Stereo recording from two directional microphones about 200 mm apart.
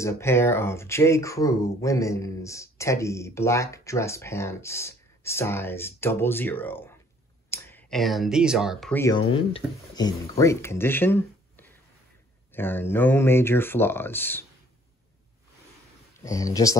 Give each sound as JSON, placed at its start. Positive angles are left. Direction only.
{"t": 0.0, "sound": "speech", "side_deg": 15}
{"t": 9.3, "sound": "speech", "side_deg": 25}
{"t": 16.3, "sound": "speech", "side_deg": 15}